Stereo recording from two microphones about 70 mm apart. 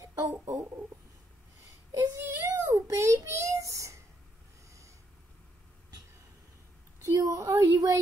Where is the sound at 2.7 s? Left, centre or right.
Right.